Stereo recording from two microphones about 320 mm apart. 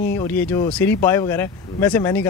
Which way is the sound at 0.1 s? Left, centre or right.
Centre.